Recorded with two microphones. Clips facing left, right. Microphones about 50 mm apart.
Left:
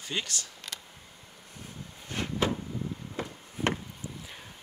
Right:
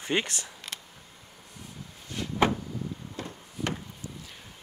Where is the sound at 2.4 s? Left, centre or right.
Right.